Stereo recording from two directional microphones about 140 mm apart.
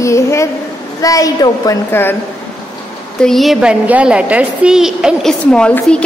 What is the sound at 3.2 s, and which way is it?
A woman's voice, centre (ahead or behind).